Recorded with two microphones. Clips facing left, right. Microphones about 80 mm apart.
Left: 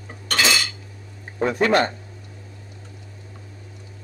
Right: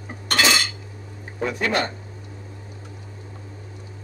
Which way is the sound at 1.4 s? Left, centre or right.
Left.